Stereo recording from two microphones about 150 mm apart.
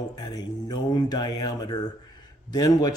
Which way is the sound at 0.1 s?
25° left (ahead or behind).